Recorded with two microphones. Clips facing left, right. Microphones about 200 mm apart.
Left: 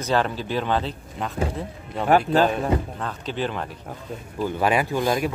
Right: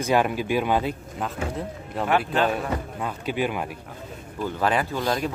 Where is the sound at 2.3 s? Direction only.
35° left (ahead or behind).